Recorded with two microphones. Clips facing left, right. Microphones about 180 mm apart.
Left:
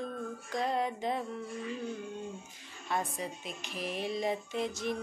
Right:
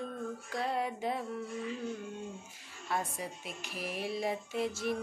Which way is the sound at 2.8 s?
5° right (ahead or behind).